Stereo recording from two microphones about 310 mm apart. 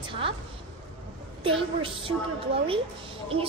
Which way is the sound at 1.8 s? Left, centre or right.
Centre.